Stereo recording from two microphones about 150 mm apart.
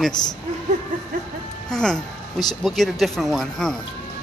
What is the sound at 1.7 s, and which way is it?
Speech, 5° left (ahead or behind).